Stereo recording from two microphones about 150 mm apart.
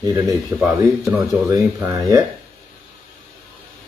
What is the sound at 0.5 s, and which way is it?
A man's voice, 10° right (ahead or behind).